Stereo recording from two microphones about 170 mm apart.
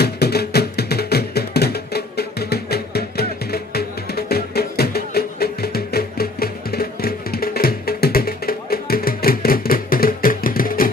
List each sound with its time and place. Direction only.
0.0 s music: 70° left (ahead or behind)